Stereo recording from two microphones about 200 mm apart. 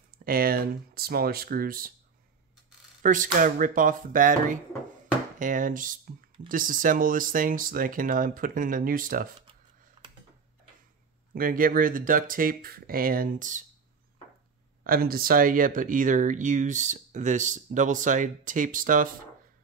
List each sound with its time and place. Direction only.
0.2 s speech: 45° right (ahead or behind)
3.0 s speech: 40° right (ahead or behind)
10.0 s tick-tock: 25° right (ahead or behind)
11.3 s speech: 45° right (ahead or behind)
14.8 s speech: 45° right (ahead or behind)